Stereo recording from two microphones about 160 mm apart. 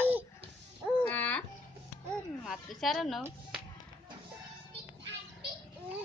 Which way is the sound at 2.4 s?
Centre (ahead or behind).